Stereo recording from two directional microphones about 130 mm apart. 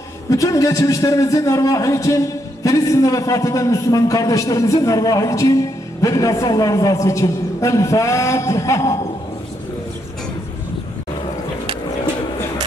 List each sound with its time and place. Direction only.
0.3 s a man's voice: 25° left (ahead or behind)